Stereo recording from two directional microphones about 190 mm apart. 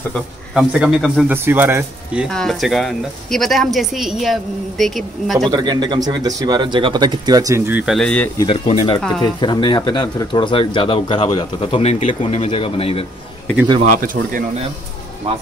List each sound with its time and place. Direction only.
0.1 s speech: centre (ahead or behind)
2.2 s speech: centre (ahead or behind)
5.5 s speech: 20° right (ahead or behind); by 8.5 s 10° left (ahead or behind)
8.5 s speech: 25° left (ahead or behind)
13.8 s speech: 45° right (ahead or behind)